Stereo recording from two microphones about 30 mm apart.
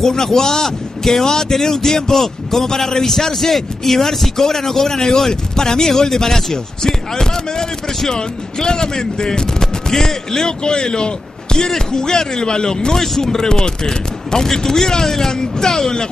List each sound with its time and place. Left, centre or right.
0.0 s a man's voice: centre